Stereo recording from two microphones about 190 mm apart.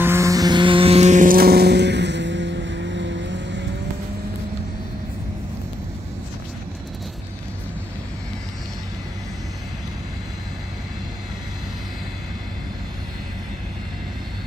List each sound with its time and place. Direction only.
0.0 s vehicle: 15° right (ahead or behind); by 3.6 s 70° right (ahead or behind)